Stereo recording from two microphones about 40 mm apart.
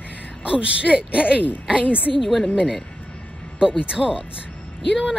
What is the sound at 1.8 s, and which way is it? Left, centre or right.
Speech, left.